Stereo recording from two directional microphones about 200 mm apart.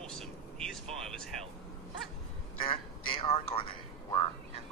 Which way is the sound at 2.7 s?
30° left (ahead or behind).